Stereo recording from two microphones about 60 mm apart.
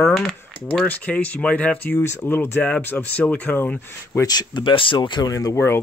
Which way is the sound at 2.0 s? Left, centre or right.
Left.